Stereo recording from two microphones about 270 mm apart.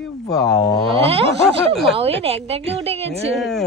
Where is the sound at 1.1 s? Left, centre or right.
Right.